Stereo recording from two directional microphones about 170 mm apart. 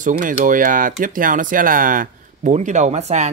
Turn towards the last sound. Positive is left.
turn(degrees=-40)  # may be behind; listen again after turning